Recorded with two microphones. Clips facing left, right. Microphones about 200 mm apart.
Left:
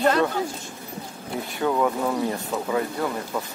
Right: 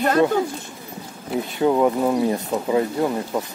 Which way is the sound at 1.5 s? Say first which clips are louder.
Right 5 dB; 25° right (ahead or behind).